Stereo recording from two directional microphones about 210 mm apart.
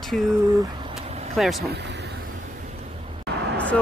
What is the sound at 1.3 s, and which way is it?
Speech, centre (ahead or behind).